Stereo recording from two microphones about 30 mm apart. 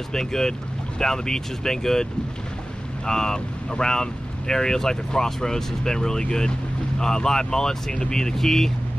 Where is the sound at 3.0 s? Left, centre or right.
Left.